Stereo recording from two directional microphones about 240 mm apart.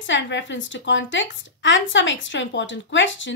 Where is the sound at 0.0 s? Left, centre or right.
Left.